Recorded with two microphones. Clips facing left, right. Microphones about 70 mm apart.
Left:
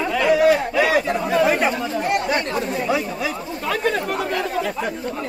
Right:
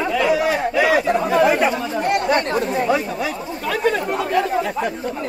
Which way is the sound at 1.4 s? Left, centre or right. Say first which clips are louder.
Even; centre.